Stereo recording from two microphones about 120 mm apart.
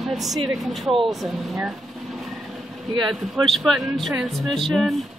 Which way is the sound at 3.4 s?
Centre (ahead or behind).